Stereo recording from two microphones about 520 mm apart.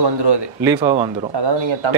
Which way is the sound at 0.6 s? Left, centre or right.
Centre.